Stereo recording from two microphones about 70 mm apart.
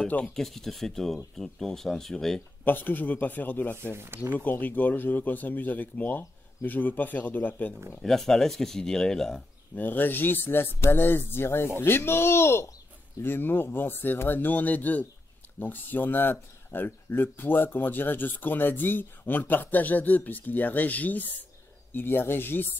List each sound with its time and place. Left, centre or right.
0.0 s speech: centre
2.6 s speech: left
4.0 s speech: right
4.4 s speech: left
8.0 s speech: centre
9.8 s speech: left